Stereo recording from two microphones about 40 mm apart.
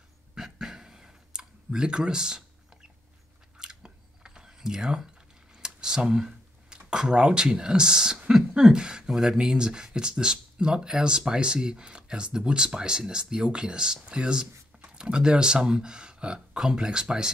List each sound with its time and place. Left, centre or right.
0.3 s clicking: centre
3.5 s a sound: centre
5.6 s speech: centre
9.1 s speech: centre
9.4 s speech: centre